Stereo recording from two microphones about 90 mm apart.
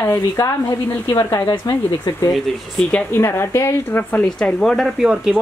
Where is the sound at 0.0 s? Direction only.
35° left (ahead or behind).